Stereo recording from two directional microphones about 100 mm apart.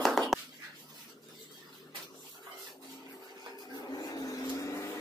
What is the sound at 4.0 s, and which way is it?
Vehicle, 40° left (ahead or behind).